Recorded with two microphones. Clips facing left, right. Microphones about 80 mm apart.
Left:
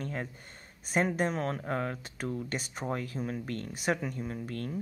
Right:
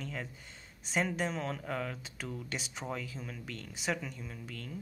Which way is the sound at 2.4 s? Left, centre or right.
Left.